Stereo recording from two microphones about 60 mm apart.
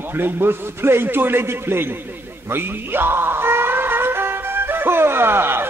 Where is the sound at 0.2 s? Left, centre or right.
Right.